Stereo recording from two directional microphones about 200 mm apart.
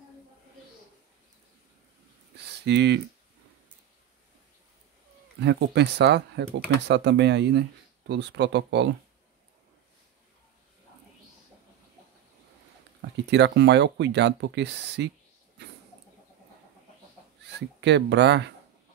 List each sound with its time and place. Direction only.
2.6 s speech: 60° right (ahead or behind)
5.4 s speech: 60° right (ahead or behind)
13.3 s speech: 60° right (ahead or behind)
17.6 s speech: 60° right (ahead or behind)